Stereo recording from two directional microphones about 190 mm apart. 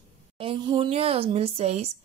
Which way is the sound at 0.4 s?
25° right (ahead or behind).